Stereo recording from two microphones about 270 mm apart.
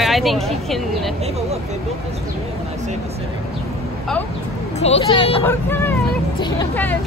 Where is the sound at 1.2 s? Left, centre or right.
Right.